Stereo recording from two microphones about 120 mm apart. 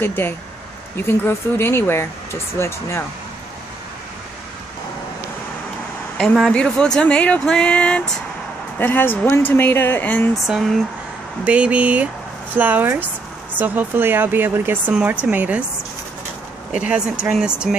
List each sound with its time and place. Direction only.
0.0 s speech: 20° left (ahead or behind)
6.1 s speech: 5° left (ahead or behind)
10.4 s speech: centre (ahead or behind)
16.7 s speech: 10° right (ahead or behind)